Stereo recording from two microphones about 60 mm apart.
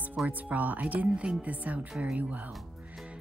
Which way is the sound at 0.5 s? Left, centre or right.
Right.